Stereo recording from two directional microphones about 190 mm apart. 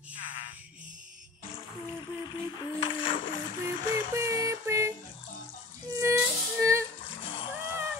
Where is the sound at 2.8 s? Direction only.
25° left (ahead or behind).